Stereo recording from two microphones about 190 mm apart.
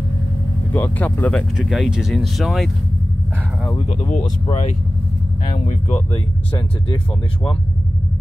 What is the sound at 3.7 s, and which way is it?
Speech, 35° left (ahead or behind).